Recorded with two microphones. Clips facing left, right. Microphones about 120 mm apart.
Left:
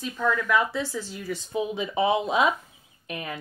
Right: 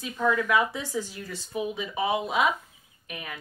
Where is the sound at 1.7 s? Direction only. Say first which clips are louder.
Left 5 dB; 30° left (ahead or behind).